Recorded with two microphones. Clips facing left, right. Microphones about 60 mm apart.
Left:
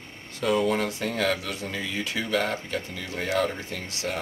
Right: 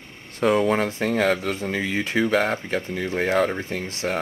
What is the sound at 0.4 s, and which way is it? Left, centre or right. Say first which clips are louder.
Speech: right 4 dB; right.